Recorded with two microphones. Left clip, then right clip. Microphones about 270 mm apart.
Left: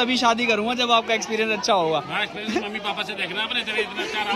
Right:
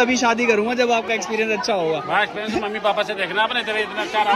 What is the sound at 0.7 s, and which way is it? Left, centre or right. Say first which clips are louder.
A man's voice: right 1 dB; centre.